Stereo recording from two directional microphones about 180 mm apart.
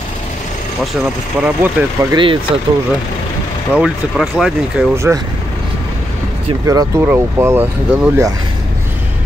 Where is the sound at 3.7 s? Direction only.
5° right (ahead or behind).